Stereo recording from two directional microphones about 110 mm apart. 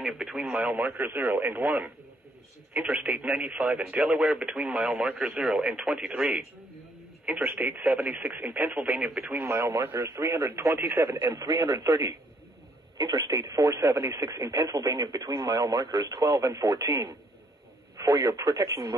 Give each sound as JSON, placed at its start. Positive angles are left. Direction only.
{"t": 0.0, "sound": "speech", "side_deg": -5}
{"t": 9.3, "sound": "speech", "side_deg": -25}
{"t": 12.9, "sound": "speech", "side_deg": -40}